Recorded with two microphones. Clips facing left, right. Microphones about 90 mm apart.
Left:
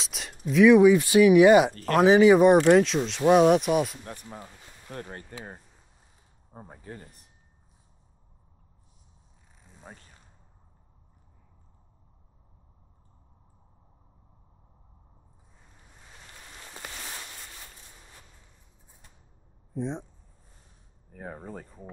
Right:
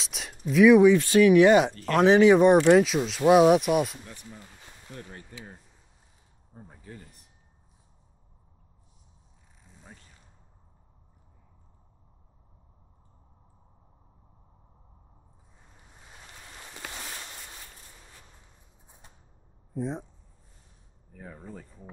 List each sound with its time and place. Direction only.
0.0 s a sound: centre (ahead or behind)
0.9 s speech: 10° left (ahead or behind)
1.7 s speech: 45° left (ahead or behind)
2.0 s speech: 5° left (ahead or behind)
4.0 s speech: 50° left (ahead or behind)
9.7 s zipper: 50° left (ahead or behind)
18.9 s a sound: 20° right (ahead or behind)
19.7 s speech: 5° right (ahead or behind)
21.1 s speech: 50° left (ahead or behind)